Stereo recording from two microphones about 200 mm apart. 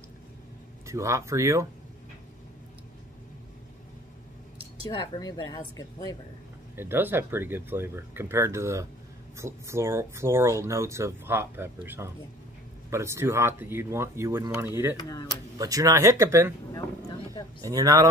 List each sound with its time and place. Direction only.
0.8 s speech: 15° right (ahead or behind)
4.9 s speech: 20° left (ahead or behind)
6.8 s speech: 10° right (ahead or behind)
15.0 s speech: 20° left (ahead or behind)
15.5 s speech: 15° right (ahead or behind)
17.6 s speech: 15° right (ahead or behind)